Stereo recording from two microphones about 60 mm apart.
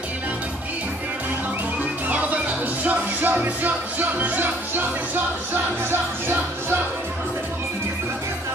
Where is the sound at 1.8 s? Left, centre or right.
Right.